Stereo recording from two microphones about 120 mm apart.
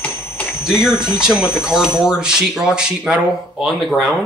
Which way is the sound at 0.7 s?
5° right (ahead or behind).